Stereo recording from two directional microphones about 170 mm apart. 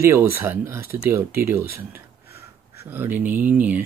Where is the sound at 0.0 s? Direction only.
15° right (ahead or behind).